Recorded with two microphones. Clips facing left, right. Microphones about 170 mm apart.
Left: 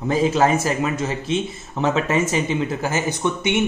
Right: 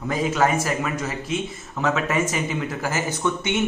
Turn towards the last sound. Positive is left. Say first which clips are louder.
# left 2 dB
turn(degrees=20)  # may be behind; listen again after turning